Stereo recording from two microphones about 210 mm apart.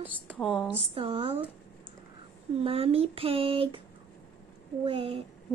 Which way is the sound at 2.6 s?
25° right (ahead or behind).